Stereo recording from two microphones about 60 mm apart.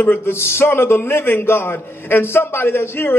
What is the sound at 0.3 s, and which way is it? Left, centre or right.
A man's voice, left.